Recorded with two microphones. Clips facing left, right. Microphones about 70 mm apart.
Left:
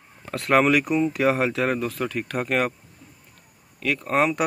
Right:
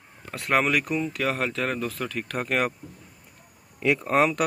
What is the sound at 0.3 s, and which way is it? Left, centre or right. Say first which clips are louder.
Speech: left 4 dB; centre.